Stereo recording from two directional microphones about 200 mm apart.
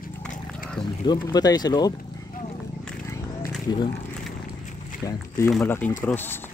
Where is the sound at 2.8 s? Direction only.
5° left (ahead or behind).